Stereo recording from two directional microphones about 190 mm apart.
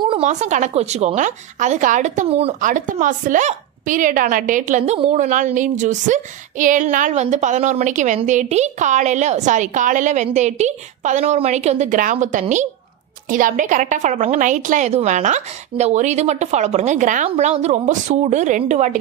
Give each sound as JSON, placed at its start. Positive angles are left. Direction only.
{"t": 0.0, "sound": "a woman's voice", "side_deg": -30}